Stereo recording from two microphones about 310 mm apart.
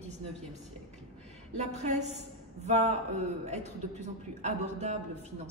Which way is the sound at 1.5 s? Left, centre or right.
Right.